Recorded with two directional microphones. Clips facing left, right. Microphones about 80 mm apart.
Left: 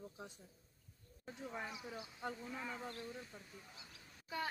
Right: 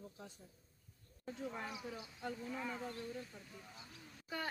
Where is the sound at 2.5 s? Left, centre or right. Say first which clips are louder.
Right 2 dB; centre.